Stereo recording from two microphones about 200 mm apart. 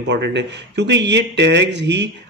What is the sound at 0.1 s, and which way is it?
Speech, 60° right (ahead or behind).